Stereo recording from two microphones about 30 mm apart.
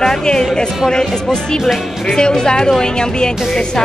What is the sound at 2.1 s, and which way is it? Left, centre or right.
Speech, left.